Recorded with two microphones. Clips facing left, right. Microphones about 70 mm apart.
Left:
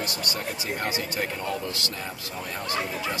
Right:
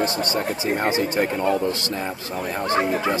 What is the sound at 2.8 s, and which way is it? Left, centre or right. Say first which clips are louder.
Speech: right 10 dB; right.